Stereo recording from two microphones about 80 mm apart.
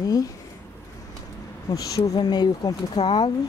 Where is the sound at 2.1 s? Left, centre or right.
Left.